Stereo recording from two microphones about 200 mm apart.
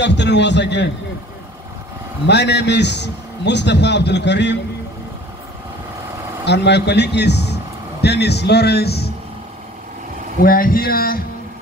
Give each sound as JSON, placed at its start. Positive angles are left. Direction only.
{"t": 0.0, "sound": "a man's voice", "side_deg": 60}
{"t": 2.2, "sound": "a man's voice", "side_deg": 60}
{"t": 6.4, "sound": "a man's voice", "side_deg": 60}
{"t": 10.4, "sound": "speech", "side_deg": 45}